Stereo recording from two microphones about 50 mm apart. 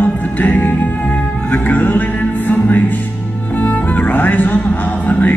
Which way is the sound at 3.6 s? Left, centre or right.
Left.